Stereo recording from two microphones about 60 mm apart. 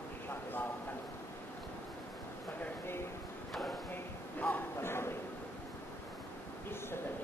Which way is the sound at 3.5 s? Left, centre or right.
Centre.